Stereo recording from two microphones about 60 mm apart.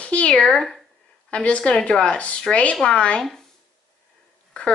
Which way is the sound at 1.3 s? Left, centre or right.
Centre.